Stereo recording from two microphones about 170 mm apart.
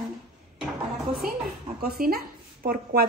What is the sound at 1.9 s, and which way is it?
Speech, 65° right (ahead or behind).